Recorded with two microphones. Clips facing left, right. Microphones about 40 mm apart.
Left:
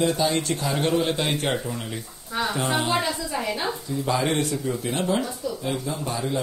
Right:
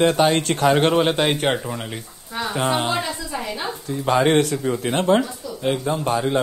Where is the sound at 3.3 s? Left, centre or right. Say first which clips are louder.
Even; centre.